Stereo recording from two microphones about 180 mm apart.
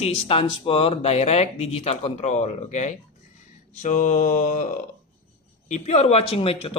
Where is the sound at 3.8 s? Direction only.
45° left (ahead or behind).